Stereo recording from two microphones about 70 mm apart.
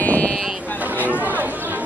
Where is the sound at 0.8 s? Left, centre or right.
Right.